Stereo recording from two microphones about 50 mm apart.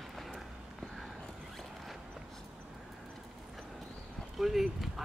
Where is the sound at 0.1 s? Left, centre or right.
Centre.